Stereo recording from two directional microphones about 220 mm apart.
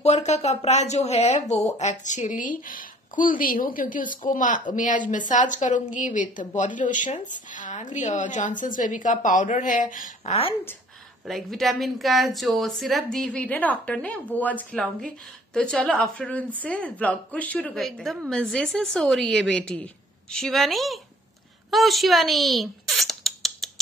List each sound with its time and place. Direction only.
0.0 s a woman's voice: 30° left (ahead or behind)
11.2 s speech: centre (ahead or behind)
21.6 s a sound: centre (ahead or behind)